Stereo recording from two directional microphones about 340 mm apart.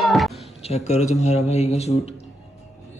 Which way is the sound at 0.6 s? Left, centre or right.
Centre.